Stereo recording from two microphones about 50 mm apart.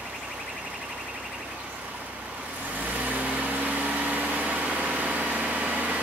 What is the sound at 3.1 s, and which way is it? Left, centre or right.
Vehicle, right.